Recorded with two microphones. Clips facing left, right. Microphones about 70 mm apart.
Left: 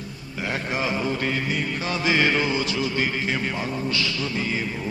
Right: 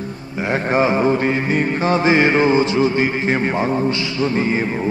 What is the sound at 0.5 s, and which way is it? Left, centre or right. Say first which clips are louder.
A man's voice: right 10 dB; right.